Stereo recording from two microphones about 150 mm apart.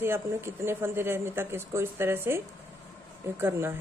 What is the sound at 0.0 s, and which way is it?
Speech, 15° right (ahead or behind).